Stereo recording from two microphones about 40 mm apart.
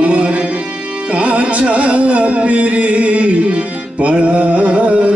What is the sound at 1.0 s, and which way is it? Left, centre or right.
Carnatic music, right.